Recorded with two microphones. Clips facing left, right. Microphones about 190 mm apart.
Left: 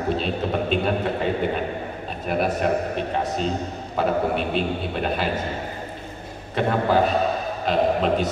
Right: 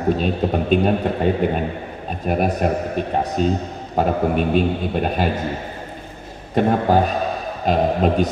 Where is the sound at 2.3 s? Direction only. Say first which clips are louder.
Right 2 dB; 45° right (ahead or behind).